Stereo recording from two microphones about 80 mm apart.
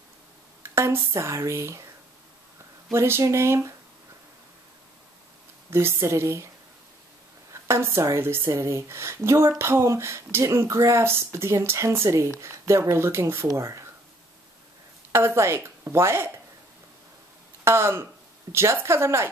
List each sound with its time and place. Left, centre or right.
0.6 s speech: right
2.9 s a woman's voice: right
5.7 s a woman's voice: right
7.6 s a woman's voice: right
15.1 s a woman's voice: right
17.6 s a woman's voice: right